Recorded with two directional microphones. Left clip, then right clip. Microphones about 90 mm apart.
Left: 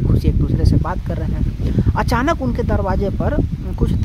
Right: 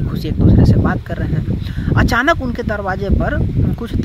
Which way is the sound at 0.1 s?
30° left (ahead or behind).